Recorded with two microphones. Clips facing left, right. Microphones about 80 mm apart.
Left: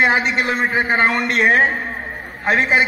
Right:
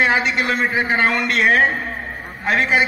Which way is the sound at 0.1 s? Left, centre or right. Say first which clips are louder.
Left 1 dB; left.